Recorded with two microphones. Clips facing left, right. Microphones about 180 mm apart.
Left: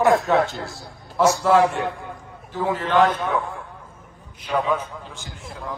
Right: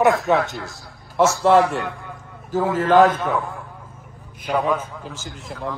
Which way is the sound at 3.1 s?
Centre (ahead or behind).